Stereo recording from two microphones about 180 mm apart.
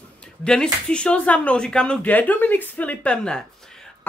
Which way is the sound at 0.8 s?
5° left (ahead or behind).